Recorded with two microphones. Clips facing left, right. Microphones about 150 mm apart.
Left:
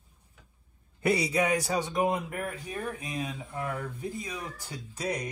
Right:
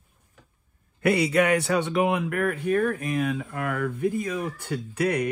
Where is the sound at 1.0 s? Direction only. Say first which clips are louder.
Right 5 dB; 65° right (ahead or behind).